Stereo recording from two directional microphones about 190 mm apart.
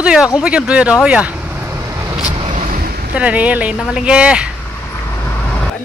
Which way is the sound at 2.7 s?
50° right (ahead or behind).